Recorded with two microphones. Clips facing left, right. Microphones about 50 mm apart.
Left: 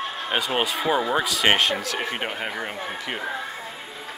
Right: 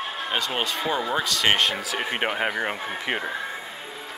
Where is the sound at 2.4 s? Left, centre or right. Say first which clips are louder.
Right 4 dB; right.